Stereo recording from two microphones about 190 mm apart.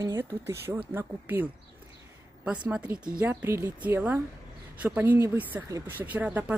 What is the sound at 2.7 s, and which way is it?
Speech, 5° right (ahead or behind).